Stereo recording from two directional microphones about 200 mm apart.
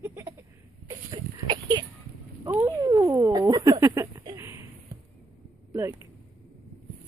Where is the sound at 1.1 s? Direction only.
20° right (ahead or behind).